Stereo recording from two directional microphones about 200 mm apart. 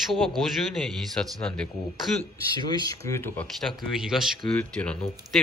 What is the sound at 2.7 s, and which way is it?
Speech, 20° left (ahead or behind).